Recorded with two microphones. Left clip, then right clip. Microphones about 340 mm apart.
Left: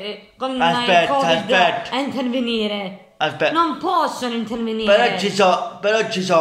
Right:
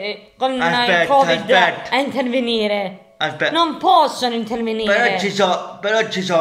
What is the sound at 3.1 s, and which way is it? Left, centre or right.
Speech, centre.